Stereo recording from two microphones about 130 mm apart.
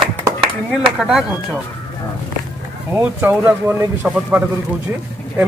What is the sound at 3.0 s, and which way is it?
Speech, 15° right (ahead or behind).